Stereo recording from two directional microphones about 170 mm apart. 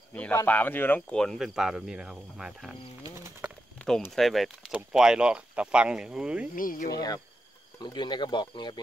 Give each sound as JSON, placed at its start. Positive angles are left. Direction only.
{"t": 0.1, "sound": "speech", "side_deg": 10}
{"t": 4.1, "sound": "speech", "side_deg": 0}
{"t": 6.5, "sound": "speech", "side_deg": 55}
{"t": 6.9, "sound": "speech", "side_deg": 20}